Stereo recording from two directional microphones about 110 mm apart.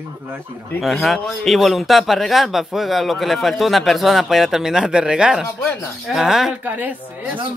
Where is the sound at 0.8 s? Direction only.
Centre (ahead or behind).